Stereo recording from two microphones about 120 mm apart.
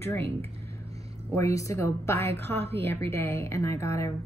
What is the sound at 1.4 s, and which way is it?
A woman's voice, 25° left (ahead or behind).